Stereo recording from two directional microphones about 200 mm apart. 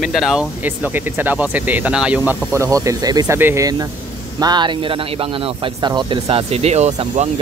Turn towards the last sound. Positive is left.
turn(degrees=-35)  # may be behind; listen again after turning